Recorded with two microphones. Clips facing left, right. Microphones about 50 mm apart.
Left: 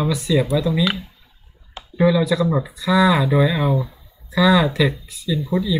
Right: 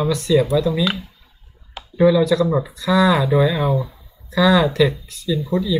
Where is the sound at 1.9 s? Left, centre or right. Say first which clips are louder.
Right 3 dB; centre.